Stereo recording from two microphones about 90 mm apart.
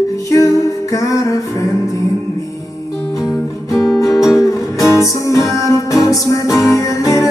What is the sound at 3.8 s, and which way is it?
Music, 40° left (ahead or behind).